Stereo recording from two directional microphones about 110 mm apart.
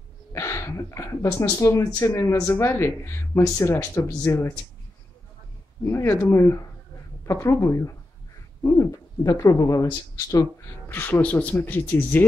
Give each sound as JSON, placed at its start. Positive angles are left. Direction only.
{"t": 0.3, "sound": "speech", "side_deg": 25}
{"t": 5.9, "sound": "speech", "side_deg": 25}
{"t": 10.9, "sound": "speech", "side_deg": 20}